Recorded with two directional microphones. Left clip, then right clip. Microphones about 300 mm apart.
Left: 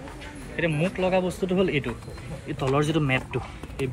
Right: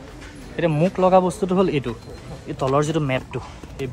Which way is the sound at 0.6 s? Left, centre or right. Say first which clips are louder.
Right 6 dB; centre.